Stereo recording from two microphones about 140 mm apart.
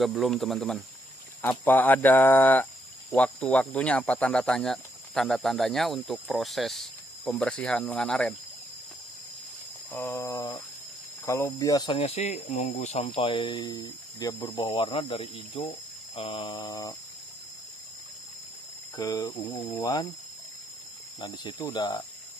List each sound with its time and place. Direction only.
0.2 s speech: centre (ahead or behind)
1.4 s speech: 15° left (ahead or behind)
9.9 s cricket: 15° left (ahead or behind)
11.2 s speech: 20° left (ahead or behind)
14.4 s speech: 40° left (ahead or behind)
18.9 s cricket: 25° left (ahead or behind)
21.2 s speech: 30° left (ahead or behind)
21.6 s cricket: 25° left (ahead or behind)